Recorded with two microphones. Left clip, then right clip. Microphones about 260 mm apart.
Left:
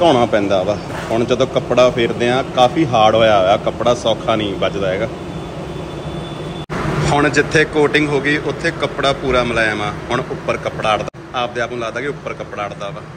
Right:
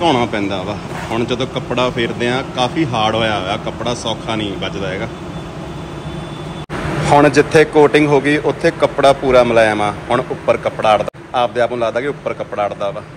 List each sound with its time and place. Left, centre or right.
0.0 s speech: centre
1.7 s speech: centre
7.1 s speech: centre